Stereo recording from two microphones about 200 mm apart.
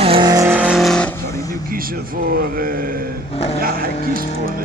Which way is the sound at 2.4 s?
45° right (ahead or behind).